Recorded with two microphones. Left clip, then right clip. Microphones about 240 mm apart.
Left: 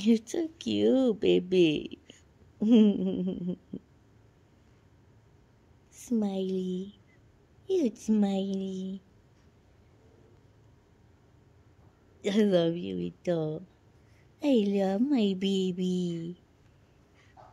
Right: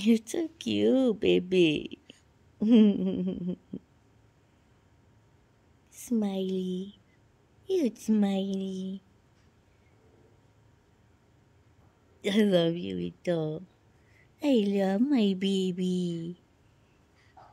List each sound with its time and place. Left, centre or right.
0.0 s speech: right
5.9 s speech: right
12.2 s speech: right